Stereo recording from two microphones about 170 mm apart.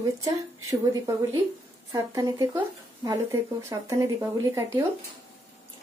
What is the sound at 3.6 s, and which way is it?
Speech, 15° right (ahead or behind).